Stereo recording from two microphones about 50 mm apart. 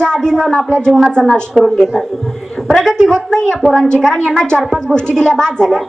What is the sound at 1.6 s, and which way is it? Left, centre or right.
Speech, centre.